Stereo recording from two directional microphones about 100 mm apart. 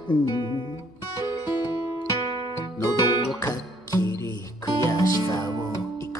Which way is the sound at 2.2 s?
55° right (ahead or behind).